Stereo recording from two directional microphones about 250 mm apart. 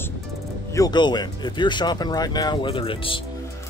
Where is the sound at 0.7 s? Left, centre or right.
Centre.